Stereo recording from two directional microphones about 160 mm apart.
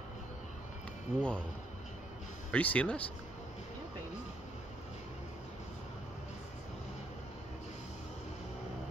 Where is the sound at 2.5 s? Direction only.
10° left (ahead or behind).